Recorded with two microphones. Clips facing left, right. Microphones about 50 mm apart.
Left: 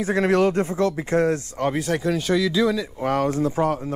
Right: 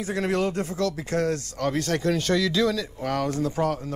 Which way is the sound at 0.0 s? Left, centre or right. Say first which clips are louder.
Left 6 dB; left.